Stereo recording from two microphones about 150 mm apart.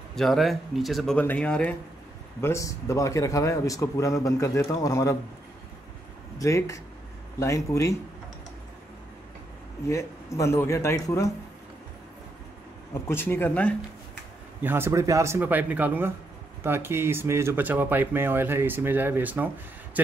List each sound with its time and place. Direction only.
0.1 s speech: centre (ahead or behind)
2.4 s a man's voice: 20° left (ahead or behind)
6.3 s a man's voice: 20° left (ahead or behind)
9.8 s a man's voice: 20° left (ahead or behind)
13.0 s speech: 15° left (ahead or behind)
14.6 s speech: 15° right (ahead or behind)